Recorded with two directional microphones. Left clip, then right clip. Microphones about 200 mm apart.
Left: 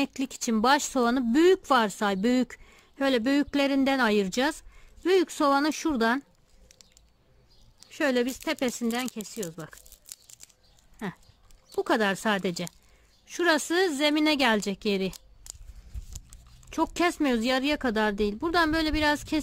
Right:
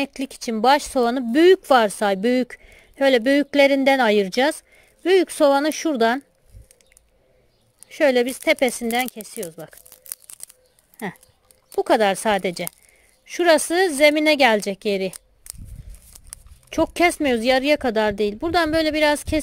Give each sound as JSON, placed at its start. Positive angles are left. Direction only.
{"t": 0.0, "sound": "speech", "side_deg": -10}
{"t": 7.8, "sound": "speech", "side_deg": -15}
{"t": 11.7, "sound": "speech", "side_deg": -15}
{"t": 16.1, "sound": "a sound", "side_deg": 0}
{"t": 16.6, "sound": "speech", "side_deg": -15}